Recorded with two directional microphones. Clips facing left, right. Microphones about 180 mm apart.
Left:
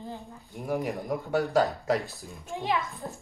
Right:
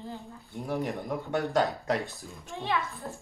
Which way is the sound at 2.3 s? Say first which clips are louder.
Left 3 dB; 15° left (ahead or behind).